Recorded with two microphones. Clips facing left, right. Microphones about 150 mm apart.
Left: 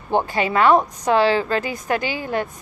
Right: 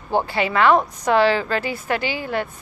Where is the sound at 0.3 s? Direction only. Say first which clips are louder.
Left 1 dB; 40° left (ahead or behind).